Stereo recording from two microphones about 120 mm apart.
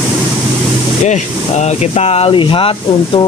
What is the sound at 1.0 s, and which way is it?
Speech, 70° left (ahead or behind).